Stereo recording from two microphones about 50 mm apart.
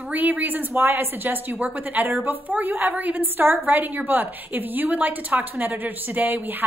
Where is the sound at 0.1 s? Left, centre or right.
Right.